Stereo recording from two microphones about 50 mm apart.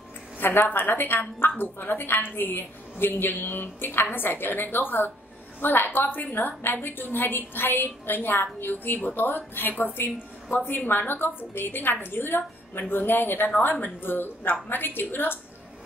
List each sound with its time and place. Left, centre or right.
0.4 s a woman's voice: left